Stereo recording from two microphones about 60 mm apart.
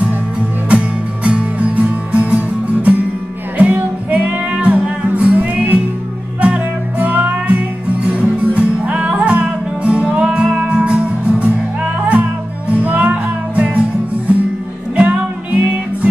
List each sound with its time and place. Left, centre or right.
0.7 s music: centre
15.0 s music: right